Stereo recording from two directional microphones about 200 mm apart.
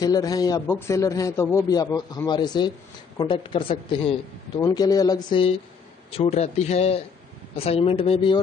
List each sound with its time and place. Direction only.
0.0 s a man's voice: 20° left (ahead or behind)